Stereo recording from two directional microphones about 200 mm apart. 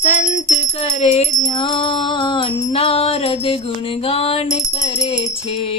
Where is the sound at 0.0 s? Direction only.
35° left (ahead or behind).